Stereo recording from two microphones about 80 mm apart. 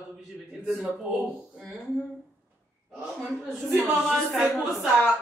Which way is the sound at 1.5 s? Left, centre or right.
Centre.